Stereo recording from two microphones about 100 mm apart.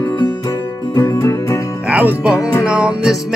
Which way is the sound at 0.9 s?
40° left (ahead or behind).